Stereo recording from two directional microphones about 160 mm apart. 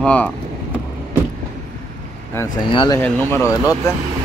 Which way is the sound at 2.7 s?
30° left (ahead or behind).